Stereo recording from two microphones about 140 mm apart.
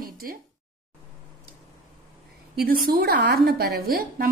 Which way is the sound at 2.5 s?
90° right.